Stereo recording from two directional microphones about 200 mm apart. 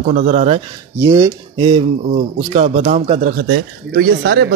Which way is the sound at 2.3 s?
30° right (ahead or behind).